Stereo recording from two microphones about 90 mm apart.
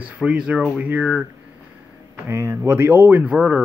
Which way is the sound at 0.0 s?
10° right (ahead or behind).